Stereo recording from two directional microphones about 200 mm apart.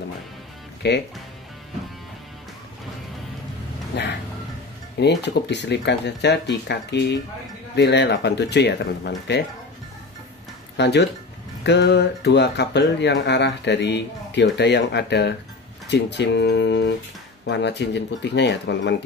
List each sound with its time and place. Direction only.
0.8 s speech: 55° left (ahead or behind)
3.9 s speech: 60° left (ahead or behind)
10.8 s speech: 60° left (ahead or behind)